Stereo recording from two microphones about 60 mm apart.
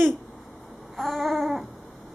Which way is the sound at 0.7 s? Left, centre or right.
Centre.